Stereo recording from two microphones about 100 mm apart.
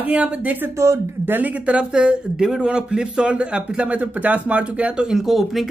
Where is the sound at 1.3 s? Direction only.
15° right (ahead or behind).